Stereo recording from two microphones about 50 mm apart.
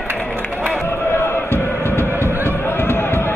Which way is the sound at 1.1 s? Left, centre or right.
Left.